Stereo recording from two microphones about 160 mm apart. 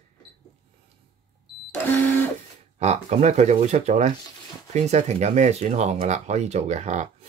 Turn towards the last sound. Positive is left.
turn(degrees=-45)  # may be behind; listen again after turning